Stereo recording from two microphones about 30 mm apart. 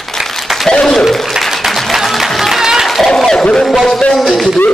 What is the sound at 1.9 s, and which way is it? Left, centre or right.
Music, centre.